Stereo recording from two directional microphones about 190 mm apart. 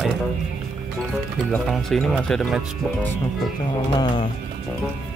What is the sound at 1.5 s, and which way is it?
Speech, centre (ahead or behind).